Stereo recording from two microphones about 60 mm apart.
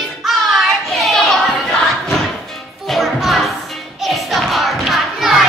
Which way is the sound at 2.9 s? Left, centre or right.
Centre.